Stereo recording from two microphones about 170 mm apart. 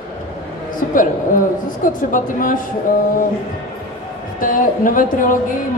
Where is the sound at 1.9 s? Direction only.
50° left (ahead or behind).